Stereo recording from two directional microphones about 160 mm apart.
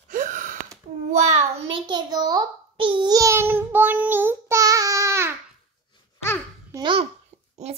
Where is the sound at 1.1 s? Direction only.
45° right (ahead or behind).